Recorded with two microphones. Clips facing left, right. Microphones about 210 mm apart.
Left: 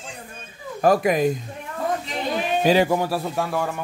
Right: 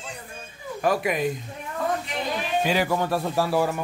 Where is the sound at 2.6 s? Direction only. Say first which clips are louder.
Left 7 dB; 35° left (ahead or behind).